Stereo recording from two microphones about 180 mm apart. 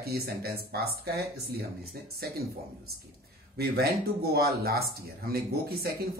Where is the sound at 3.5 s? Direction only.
60° right (ahead or behind).